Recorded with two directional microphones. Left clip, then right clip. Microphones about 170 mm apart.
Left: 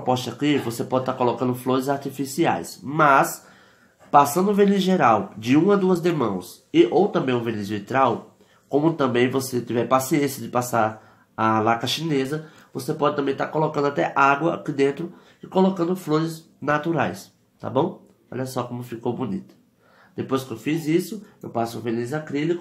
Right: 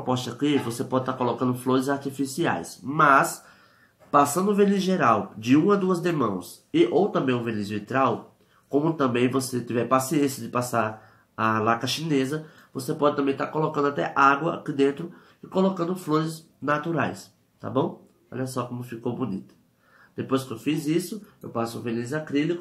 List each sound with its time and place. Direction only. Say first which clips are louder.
0.0 s speech: left 4 dB; 25° left (ahead or behind)